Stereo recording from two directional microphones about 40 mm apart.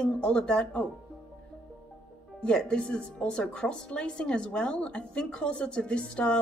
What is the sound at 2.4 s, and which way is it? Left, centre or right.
Speech, left.